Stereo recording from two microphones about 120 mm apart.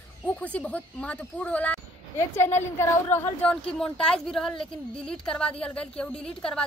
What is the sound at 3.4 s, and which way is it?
A woman's voice, 10° left (ahead or behind).